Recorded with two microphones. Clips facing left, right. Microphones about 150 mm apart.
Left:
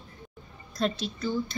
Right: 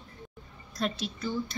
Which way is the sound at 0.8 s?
5° right (ahead or behind).